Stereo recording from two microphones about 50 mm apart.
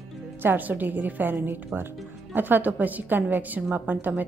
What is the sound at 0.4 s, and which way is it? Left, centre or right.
A woman's voice, right.